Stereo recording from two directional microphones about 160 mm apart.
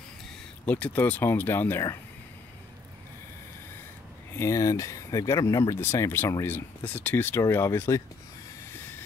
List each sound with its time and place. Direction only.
0.7 s speech: 10° left (ahead or behind)
4.4 s speech: 20° left (ahead or behind)
8.7 s train: 10° left (ahead or behind)